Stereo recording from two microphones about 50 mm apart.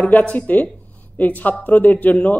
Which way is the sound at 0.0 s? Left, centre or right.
Left.